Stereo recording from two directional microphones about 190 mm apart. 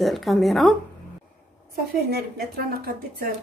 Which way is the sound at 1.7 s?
55° right (ahead or behind).